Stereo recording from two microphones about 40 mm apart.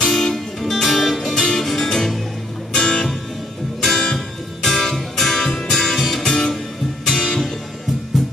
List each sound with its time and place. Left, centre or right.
0.0 s music: centre
6.2 s music: centre